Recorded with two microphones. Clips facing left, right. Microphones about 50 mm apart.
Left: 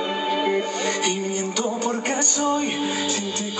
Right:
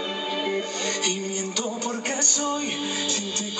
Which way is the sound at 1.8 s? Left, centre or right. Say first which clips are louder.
Left 4 dB; centre.